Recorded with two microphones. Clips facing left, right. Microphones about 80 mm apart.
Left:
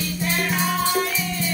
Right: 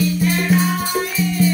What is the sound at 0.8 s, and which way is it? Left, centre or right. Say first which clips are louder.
Music: right 2 dB; right.